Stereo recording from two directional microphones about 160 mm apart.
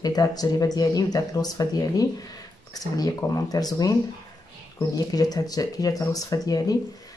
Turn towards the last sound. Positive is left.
turn(degrees=20)  # may be behind; listen again after turning